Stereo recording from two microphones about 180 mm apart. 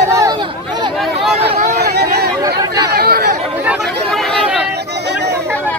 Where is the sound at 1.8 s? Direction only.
60° right (ahead or behind).